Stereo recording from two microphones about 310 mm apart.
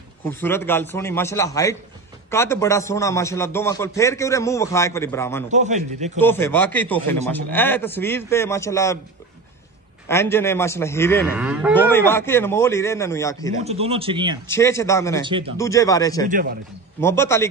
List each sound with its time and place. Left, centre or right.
0.3 s a man's voice: centre
5.5 s a man's voice: right
6.1 s a man's voice: centre
10.0 s a man's voice: centre
11.3 s speech: centre
11.9 s a man's voice: centre
13.6 s speech: centre
14.5 s a man's voice: centre
16.3 s a man's voice: right
17.0 s a man's voice: centre